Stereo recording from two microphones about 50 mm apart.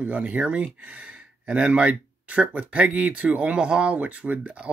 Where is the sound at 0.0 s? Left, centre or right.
Right.